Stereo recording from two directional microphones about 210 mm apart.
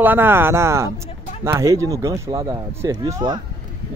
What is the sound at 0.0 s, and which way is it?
Speech, 10° right (ahead or behind).